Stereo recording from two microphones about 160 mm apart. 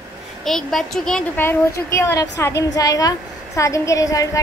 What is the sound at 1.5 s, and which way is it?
A woman's voice, 15° left (ahead or behind).